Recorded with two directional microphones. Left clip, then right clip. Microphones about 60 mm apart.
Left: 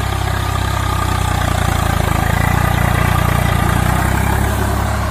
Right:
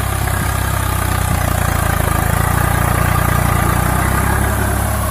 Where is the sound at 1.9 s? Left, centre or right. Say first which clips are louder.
Even; centre.